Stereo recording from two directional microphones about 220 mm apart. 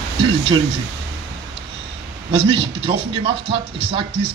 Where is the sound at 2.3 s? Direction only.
25° right (ahead or behind).